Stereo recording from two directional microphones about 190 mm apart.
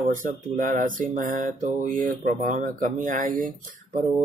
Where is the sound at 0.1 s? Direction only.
45° right (ahead or behind).